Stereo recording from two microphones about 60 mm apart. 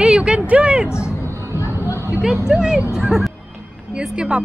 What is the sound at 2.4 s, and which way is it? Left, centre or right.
Speech, centre.